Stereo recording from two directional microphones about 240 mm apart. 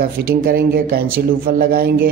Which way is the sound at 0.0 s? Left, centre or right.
Right.